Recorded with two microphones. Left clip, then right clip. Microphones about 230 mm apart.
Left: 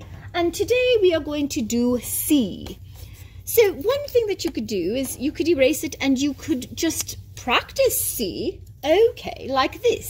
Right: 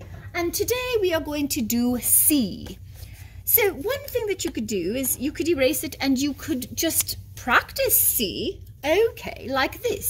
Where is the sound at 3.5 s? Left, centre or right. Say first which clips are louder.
Left 5 dB; centre.